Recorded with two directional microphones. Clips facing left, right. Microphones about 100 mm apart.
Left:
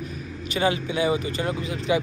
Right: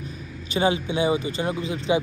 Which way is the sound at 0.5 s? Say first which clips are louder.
Right 1 dB; 25° right (ahead or behind).